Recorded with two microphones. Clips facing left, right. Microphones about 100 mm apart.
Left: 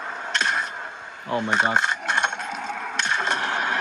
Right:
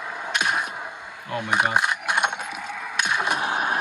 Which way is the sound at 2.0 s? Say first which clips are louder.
Even; 10° right (ahead or behind).